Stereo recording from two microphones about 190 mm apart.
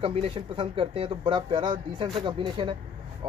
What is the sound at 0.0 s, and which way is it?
Speech, 30° right (ahead or behind).